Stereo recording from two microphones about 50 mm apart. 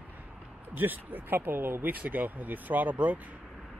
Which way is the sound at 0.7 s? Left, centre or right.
Right.